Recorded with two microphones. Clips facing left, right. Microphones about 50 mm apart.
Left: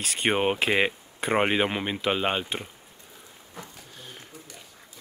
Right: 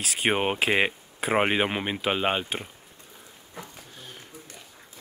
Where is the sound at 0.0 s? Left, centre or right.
Centre.